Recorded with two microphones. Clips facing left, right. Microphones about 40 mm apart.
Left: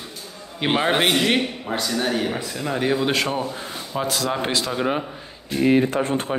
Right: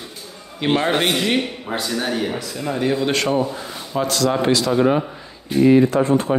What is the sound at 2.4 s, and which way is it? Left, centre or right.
Speech, centre.